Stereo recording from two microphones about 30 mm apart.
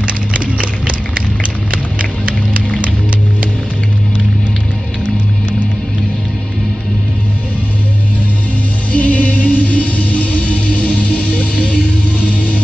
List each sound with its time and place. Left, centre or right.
8.9 s music: left
12.3 s music: left